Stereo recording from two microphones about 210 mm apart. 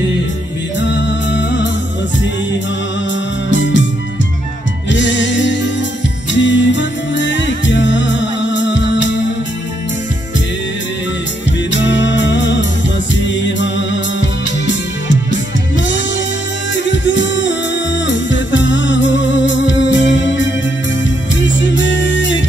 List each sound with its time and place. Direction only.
0.7 s music: 55° left (ahead or behind)
3.4 s music: 60° left (ahead or behind)
4.9 s music: 60° left (ahead or behind)
11.7 s music: 60° left (ahead or behind)
16.7 s music: 60° left (ahead or behind)